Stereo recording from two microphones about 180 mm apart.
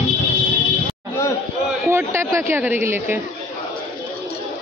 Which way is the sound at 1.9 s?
15° right (ahead or behind).